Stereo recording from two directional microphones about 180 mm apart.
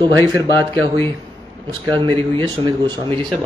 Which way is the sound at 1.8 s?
25° right (ahead or behind).